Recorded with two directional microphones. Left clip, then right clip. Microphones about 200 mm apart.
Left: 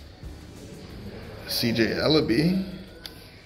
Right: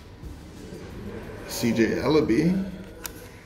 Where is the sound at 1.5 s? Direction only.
50° left (ahead or behind).